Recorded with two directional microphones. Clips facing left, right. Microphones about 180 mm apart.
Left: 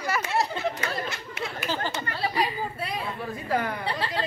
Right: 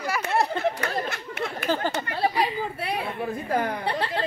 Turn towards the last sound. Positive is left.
turn(degrees=-55)  # may be behind; listen again after turning